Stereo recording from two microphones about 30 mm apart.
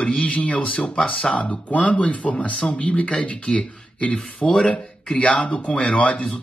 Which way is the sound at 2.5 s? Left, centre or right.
Left.